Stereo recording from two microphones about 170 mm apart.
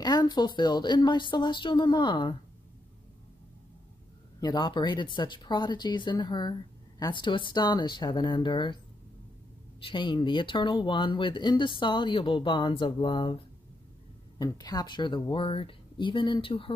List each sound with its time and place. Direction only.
0.0 s speech: 25° left (ahead or behind)
4.4 s speech: 25° left (ahead or behind)
9.8 s speech: 30° left (ahead or behind)
14.4 s speech: 20° left (ahead or behind)